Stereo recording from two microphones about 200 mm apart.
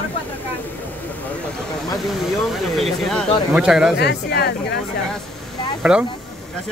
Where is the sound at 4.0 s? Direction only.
55° left (ahead or behind).